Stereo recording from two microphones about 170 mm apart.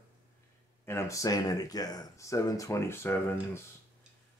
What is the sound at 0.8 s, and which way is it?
Speech, 15° left (ahead or behind).